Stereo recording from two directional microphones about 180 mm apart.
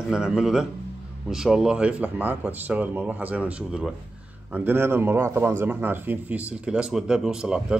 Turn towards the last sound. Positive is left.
turn(degrees=-5)  # may be behind; listen again after turning